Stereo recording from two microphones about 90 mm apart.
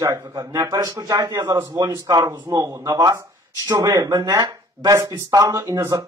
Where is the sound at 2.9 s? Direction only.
50° right (ahead or behind).